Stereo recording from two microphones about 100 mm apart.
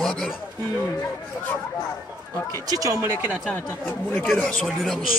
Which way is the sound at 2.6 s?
35° right (ahead or behind).